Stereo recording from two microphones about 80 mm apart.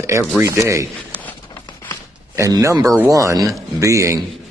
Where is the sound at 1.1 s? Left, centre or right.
Left.